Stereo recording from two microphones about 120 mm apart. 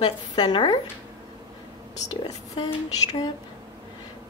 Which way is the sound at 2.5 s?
35° left (ahead or behind).